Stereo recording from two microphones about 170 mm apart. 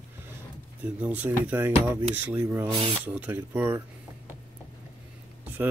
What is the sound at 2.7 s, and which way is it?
Speech, 30° right (ahead or behind).